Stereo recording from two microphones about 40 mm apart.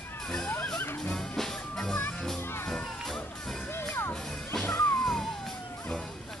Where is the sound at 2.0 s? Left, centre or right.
Left.